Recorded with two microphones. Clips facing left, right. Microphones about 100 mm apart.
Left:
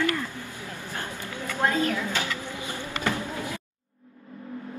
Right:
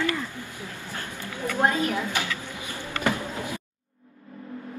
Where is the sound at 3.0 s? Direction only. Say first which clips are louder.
Right 2 dB; 20° right (ahead or behind).